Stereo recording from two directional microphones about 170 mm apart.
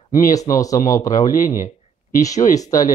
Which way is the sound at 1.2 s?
50° left (ahead or behind).